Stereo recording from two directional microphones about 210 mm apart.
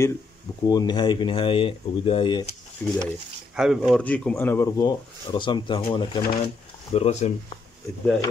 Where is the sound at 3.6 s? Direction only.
Centre (ahead or behind); by 6.2 s 20° left (ahead or behind).